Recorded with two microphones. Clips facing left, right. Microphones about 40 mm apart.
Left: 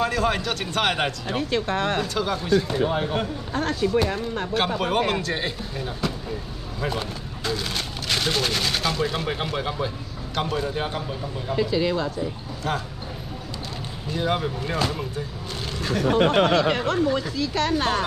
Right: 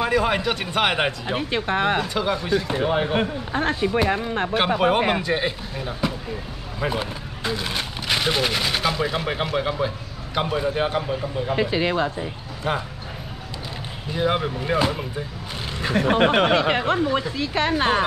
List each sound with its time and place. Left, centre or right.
0.0 s speech: centre
4.7 s speech: centre
12.7 s speech: centre
14.1 s speech: centre